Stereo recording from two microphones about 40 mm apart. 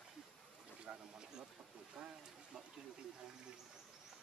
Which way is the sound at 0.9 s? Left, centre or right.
Right.